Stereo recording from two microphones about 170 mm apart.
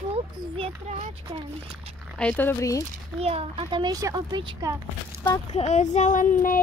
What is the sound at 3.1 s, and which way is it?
A child's voice, 35° right (ahead or behind).